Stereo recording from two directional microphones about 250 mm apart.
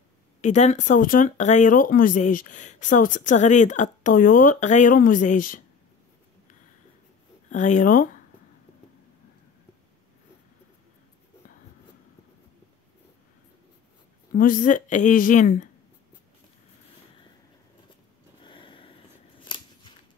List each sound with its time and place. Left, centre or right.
0.4 s speech: left
7.4 s speech: left
14.3 s speech: left
18.4 s a sound: centre
19.4 s scissors: centre